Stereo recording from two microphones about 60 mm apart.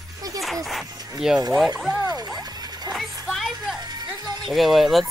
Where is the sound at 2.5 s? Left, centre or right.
Right.